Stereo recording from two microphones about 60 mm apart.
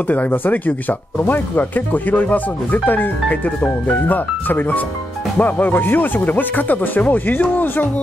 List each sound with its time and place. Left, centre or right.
0.1 s speech: left